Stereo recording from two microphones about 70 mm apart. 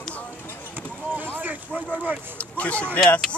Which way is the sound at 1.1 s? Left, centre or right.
Right.